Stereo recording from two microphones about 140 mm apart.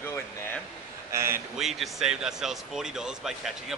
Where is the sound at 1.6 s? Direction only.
Centre (ahead or behind).